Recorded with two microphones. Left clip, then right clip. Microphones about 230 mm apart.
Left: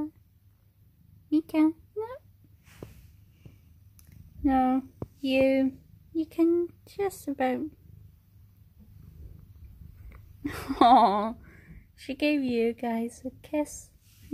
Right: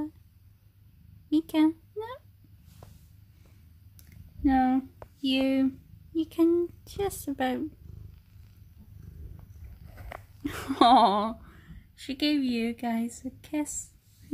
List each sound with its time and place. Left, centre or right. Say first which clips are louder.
1.3 s a sound: even; centre
4.4 s speech: even; centre
10.4 s speech: even; centre